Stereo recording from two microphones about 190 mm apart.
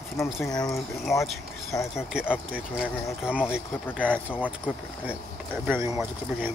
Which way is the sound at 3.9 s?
10° right (ahead or behind).